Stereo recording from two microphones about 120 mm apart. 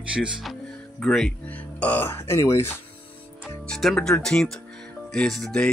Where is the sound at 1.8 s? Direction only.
15° left (ahead or behind).